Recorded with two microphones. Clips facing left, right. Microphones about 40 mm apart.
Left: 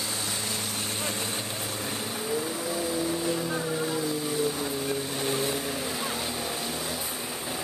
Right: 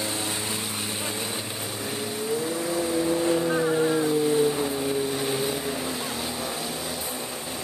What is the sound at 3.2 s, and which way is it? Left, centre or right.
Vehicle, right.